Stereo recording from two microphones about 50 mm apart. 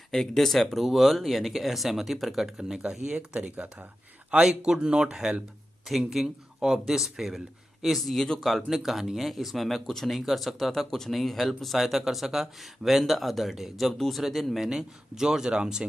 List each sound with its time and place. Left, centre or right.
0.1 s speech: centre
3.1 s speech: right
4.5 s speech: centre
5.9 s speech: centre